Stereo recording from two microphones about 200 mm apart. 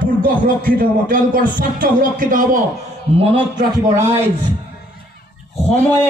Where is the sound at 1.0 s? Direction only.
45° right (ahead or behind).